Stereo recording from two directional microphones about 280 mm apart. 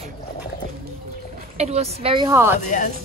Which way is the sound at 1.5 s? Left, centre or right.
Right.